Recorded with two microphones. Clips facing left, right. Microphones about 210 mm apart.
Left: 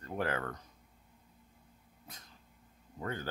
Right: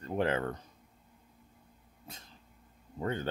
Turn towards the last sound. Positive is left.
turn(degrees=-25)  # may be behind; listen again after turning